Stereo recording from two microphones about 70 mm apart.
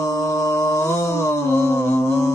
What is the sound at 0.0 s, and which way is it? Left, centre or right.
Mantra, left.